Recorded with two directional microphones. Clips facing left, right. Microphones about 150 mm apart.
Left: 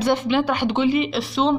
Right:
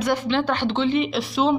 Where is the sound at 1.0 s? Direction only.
Centre (ahead or behind).